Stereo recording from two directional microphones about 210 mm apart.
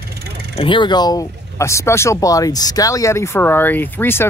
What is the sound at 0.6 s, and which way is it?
Speech, 20° left (ahead or behind).